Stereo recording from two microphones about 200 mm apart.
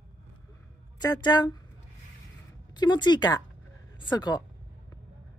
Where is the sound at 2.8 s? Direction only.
20° left (ahead or behind).